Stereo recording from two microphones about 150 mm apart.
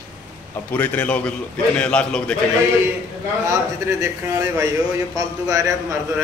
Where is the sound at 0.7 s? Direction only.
10° left (ahead or behind).